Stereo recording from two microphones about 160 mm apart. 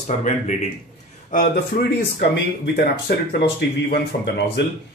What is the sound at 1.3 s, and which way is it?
Speech, 75° left (ahead or behind).